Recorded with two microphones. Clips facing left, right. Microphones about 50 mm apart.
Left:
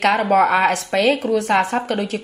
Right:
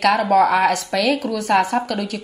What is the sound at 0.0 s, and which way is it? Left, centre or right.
A woman's voice, left.